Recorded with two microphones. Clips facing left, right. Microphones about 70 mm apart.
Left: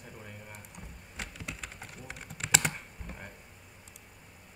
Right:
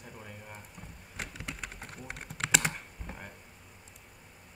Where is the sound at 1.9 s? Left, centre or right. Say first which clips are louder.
Right 2 dB; right.